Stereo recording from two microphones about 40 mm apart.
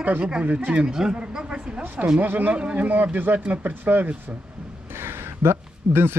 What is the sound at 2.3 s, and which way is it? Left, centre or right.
A man's voice, right.